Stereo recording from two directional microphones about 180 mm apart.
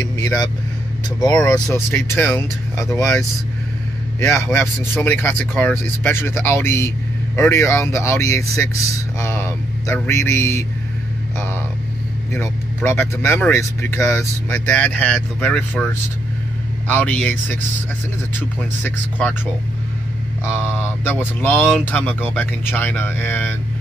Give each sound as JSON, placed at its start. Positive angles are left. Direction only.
{"t": 0.2, "sound": "speech", "side_deg": 20}
{"t": 4.6, "sound": "speech", "side_deg": 10}
{"t": 9.2, "sound": "a sound", "side_deg": 15}
{"t": 12.3, "sound": "speech", "side_deg": 10}
{"t": 18.8, "sound": "speech", "side_deg": 10}
{"t": 20.4, "sound": "speech", "side_deg": 15}